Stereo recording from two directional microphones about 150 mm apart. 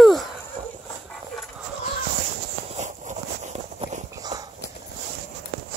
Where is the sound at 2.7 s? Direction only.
55° right (ahead or behind).